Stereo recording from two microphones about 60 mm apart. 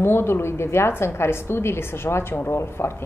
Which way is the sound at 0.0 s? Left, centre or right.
Left.